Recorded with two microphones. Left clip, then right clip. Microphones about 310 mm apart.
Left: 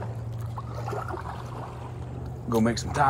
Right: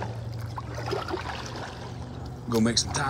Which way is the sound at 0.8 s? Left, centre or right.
Right.